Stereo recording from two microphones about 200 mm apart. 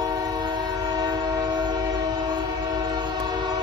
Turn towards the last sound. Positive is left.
turn(degrees=-20)  # may be behind; listen again after turning